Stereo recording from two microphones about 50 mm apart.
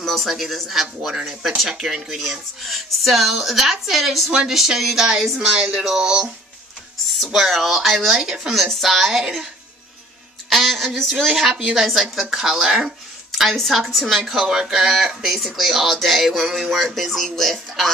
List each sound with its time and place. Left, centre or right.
0.0 s speech: centre
5.4 s speech: centre
7.3 s speech: centre
10.5 s speech: centre
11.5 s speech: centre
13.3 s speech: centre